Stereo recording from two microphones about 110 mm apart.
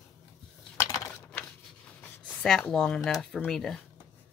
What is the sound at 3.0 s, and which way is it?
Speech, 5° left (ahead or behind).